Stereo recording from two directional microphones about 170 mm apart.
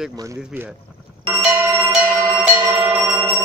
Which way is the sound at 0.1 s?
20° right (ahead or behind).